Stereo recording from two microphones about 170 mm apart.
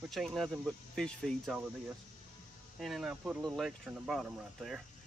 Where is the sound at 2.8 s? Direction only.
Centre (ahead or behind).